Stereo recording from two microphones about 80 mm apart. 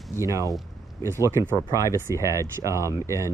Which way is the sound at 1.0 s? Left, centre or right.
Right.